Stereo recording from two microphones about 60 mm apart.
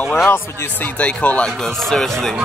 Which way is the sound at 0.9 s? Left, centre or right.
Left.